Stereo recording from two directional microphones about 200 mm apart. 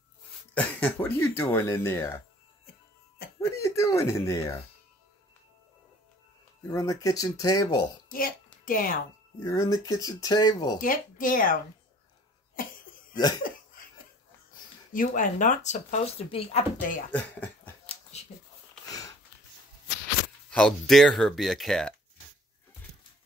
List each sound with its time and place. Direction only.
0.6 s speech: 10° left (ahead or behind)
3.3 s speech: 15° left (ahead or behind)
6.7 s speech: 15° left (ahead or behind)
8.6 s speech: 45° left (ahead or behind)
9.4 s speech: 15° left (ahead or behind)
10.8 s speech: 45° left (ahead or behind)
13.1 s laughter: 20° left (ahead or behind)
14.9 s speech: 40° left (ahead or behind)
17.1 s speech: 10° left (ahead or behind)
18.1 s a sound: 35° left (ahead or behind)
18.9 s a sound: 20° left (ahead or behind)
20.4 s speech: 5° left (ahead or behind)